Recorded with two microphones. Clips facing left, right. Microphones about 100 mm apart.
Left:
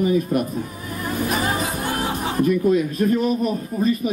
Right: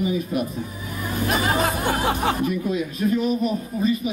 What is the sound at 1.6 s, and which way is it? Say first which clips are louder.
Music: right 2 dB; 70° right (ahead or behind).